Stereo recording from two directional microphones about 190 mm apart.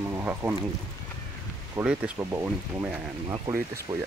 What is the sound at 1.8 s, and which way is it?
Speech, 5° right (ahead or behind).